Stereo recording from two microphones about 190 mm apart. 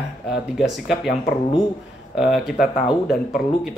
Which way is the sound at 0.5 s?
Centre (ahead or behind).